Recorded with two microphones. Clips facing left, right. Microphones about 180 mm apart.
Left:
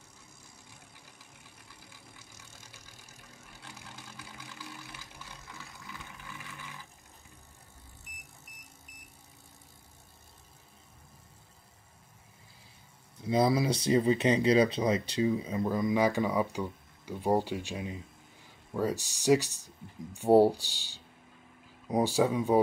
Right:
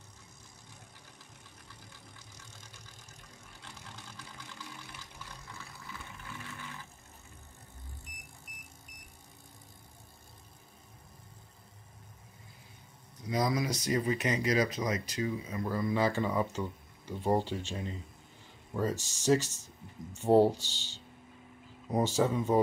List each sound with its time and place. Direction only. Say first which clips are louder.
3.6 s vehicle: left 1 dB; 5° left (ahead or behind)
13.2 s speech: left 5 dB; 30° left (ahead or behind); by 22.6 s 10° left (ahead or behind)